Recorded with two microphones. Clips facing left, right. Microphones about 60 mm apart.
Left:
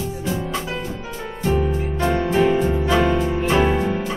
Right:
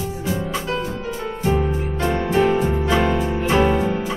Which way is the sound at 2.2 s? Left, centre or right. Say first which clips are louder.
Right 1 dB; centre.